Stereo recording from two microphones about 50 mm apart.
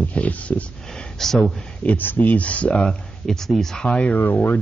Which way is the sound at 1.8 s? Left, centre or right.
Left.